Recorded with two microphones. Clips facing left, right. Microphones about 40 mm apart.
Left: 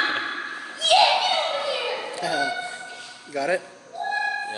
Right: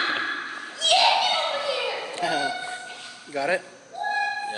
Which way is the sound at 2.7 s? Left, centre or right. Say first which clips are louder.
Even; right.